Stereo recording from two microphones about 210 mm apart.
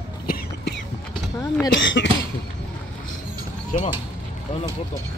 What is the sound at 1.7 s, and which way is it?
Cough, 60° left (ahead or behind).